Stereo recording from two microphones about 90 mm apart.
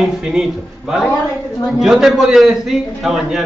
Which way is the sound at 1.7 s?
5° right (ahead or behind).